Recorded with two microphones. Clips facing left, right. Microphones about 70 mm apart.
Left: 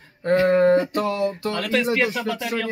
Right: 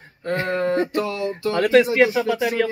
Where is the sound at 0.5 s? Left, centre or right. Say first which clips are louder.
Left 3 dB; left.